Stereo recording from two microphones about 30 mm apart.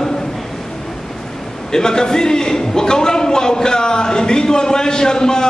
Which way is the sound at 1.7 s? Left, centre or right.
Left.